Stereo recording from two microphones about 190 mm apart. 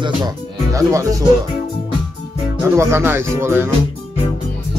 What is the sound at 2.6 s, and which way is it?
Speech, 10° right (ahead or behind).